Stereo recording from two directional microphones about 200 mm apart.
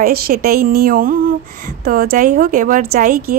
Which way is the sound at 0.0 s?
50° right (ahead or behind).